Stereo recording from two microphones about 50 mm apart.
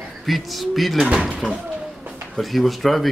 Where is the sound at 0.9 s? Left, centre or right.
Centre.